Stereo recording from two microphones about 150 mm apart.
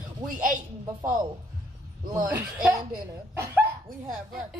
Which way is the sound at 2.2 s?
15° right (ahead or behind).